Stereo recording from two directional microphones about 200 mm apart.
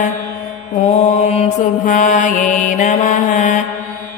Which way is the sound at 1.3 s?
35° left (ahead or behind).